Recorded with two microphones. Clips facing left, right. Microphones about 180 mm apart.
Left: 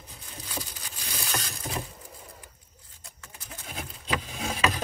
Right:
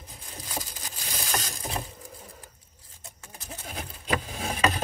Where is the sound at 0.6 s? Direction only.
40° right (ahead or behind).